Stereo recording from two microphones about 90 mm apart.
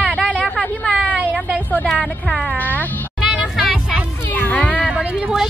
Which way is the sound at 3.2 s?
5° right (ahead or behind).